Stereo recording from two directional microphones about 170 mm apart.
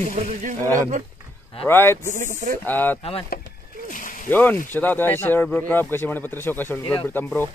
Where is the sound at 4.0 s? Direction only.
50° left (ahead or behind).